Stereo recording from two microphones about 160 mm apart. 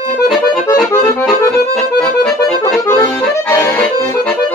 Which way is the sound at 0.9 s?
20° left (ahead or behind).